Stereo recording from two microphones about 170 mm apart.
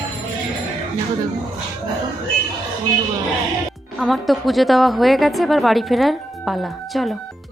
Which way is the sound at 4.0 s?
Centre (ahead or behind).